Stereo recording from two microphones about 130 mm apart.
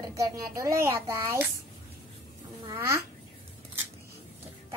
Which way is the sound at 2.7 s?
20° right (ahead or behind).